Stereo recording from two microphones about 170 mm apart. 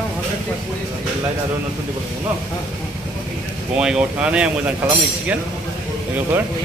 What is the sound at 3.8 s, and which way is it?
Speech, 5° right (ahead or behind).